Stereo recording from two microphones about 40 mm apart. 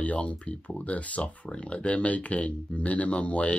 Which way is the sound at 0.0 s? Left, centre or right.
Left.